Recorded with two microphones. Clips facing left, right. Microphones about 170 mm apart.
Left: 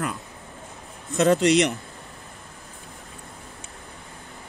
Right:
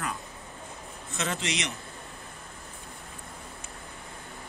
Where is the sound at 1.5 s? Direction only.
60° left (ahead or behind).